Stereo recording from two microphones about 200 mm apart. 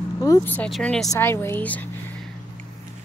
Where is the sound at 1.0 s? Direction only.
15° left (ahead or behind).